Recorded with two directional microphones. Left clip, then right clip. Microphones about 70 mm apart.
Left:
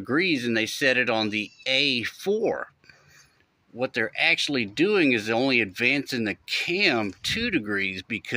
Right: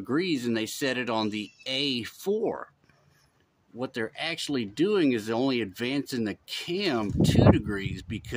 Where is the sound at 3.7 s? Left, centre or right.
Right.